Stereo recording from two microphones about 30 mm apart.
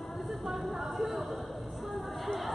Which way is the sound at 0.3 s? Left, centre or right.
Centre.